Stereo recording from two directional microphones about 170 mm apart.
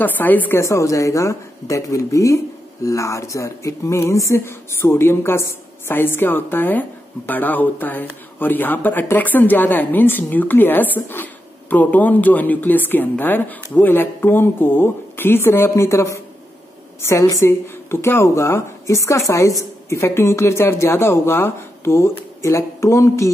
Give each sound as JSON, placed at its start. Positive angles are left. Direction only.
{"t": 0.0, "sound": "a woman's voice", "side_deg": 10}